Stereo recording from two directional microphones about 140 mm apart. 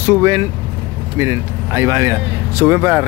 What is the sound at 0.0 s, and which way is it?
Speech, 20° right (ahead or behind).